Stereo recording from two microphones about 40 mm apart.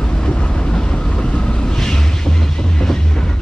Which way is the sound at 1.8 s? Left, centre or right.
Centre.